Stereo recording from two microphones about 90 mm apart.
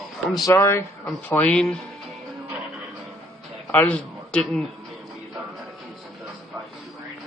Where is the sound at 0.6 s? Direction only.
25° left (ahead or behind).